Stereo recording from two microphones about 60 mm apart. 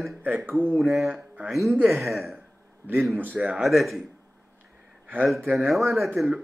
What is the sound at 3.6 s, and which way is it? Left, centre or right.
Speech, centre.